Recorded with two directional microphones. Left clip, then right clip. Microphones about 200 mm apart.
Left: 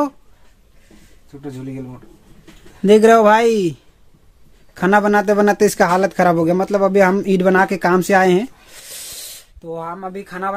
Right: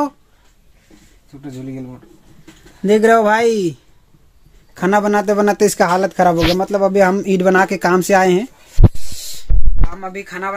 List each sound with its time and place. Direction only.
2.8 s speech: 10° left (ahead or behind)
9.1 s a sound: 35° left (ahead or behind)
9.9 s speech: centre (ahead or behind)